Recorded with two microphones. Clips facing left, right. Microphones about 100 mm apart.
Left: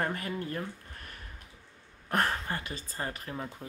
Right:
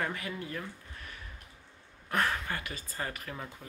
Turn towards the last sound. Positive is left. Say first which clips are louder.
# left 1 dB
turn(degrees=30)  # may be behind; listen again after turning